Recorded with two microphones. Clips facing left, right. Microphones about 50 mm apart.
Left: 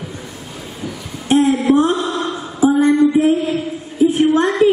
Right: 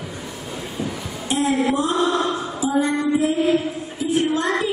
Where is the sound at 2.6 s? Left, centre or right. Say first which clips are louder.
Left 9 dB; left.